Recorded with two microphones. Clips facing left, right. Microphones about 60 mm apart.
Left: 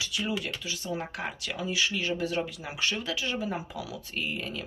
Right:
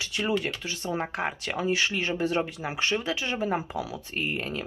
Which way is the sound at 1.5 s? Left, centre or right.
Right.